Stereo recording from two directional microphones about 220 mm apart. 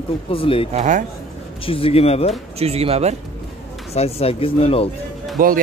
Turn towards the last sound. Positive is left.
turn(degrees=-40)  # may be behind; listen again after turning